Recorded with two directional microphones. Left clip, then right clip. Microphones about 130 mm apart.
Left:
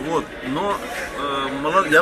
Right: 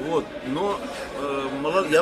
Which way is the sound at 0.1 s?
15° right (ahead or behind).